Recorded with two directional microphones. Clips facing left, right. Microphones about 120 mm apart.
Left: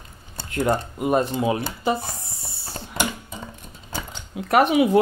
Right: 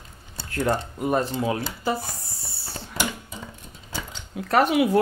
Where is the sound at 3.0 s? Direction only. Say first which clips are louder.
Left 2 dB; 55° left (ahead or behind).